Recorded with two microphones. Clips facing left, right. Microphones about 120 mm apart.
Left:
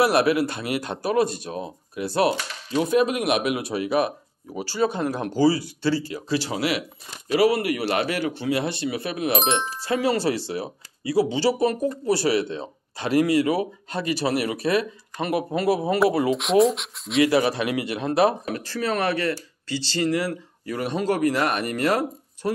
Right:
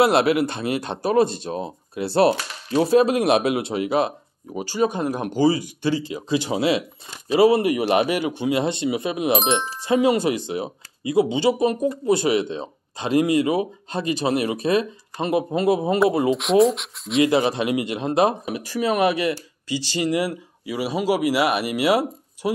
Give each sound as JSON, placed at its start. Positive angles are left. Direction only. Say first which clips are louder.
{"t": 0.0, "sound": "speech", "louder": "right 2 dB", "side_deg": -25}
{"t": 9.4, "sound": "speech", "louder": "right 2 dB", "side_deg": 0}
{"t": 9.8, "sound": "speech", "louder": "right 8 dB", "side_deg": -20}
{"t": 16.3, "sound": "speech", "louder": "right 2 dB", "side_deg": 0}
{"t": 17.2, "sound": "speech", "louder": "right 1 dB", "side_deg": -20}